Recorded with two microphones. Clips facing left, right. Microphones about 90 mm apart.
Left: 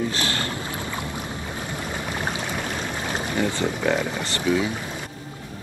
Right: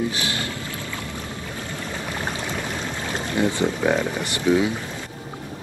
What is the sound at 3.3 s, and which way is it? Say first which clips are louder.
Speech: right 4 dB; 20° right (ahead or behind).